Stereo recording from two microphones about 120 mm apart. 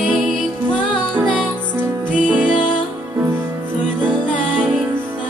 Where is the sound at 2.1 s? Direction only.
10° right (ahead or behind).